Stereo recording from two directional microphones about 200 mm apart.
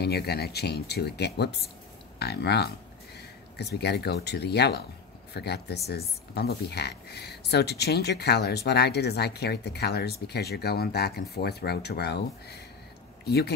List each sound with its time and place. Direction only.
0.0 s speech: 55° left (ahead or behind)